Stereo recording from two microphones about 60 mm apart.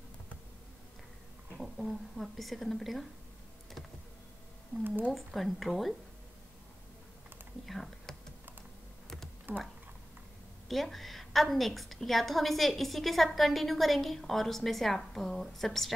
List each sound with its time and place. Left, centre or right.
1.6 s a woman's voice: centre
5.1 s a woman's voice: centre
7.6 s typing: centre
9.5 s speech: right
10.7 s a woman's voice: centre